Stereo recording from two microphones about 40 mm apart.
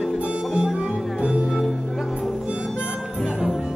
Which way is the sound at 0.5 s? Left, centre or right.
Centre.